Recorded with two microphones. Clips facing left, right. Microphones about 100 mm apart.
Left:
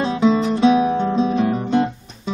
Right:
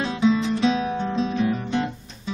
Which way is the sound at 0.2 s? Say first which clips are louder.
Left 3 dB; 50° left (ahead or behind).